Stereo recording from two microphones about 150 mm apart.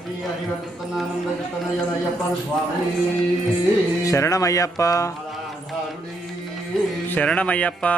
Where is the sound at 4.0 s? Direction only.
20° left (ahead or behind).